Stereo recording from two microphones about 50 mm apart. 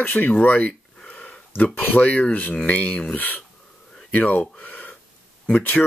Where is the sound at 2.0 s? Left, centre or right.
Left.